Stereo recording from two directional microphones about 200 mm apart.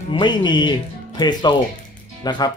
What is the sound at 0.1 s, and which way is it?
Speech, 20° left (ahead or behind).